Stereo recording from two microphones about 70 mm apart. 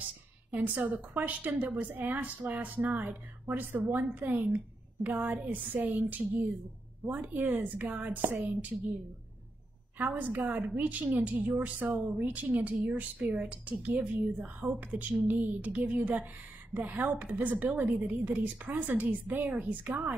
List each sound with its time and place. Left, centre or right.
0.5 s a woman's voice: right
9.9 s a woman's voice: right